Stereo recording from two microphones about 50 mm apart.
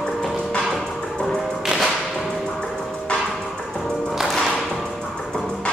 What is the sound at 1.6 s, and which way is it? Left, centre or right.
Whip, centre.